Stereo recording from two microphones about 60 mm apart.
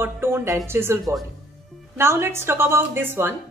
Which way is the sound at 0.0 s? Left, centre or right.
Right.